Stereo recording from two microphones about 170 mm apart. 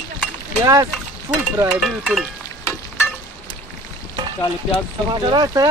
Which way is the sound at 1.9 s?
5° right (ahead or behind).